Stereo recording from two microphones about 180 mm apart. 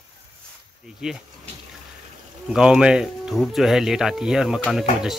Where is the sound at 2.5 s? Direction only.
5° right (ahead or behind).